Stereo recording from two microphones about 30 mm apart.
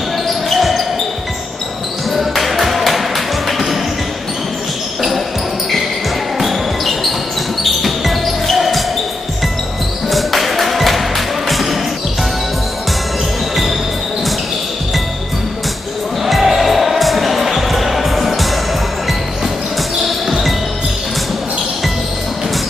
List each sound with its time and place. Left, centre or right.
0.3 s basketball bounce: centre
2.0 s music: centre
6.3 s basketball bounce: centre
10.0 s music: centre
16.3 s music: centre